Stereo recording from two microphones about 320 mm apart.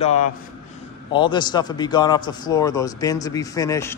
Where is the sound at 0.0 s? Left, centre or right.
Left.